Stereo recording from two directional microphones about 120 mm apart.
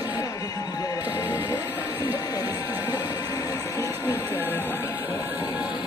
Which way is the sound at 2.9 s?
35° left (ahead or behind).